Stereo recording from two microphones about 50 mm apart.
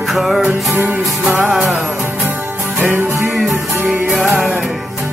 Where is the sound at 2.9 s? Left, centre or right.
Right.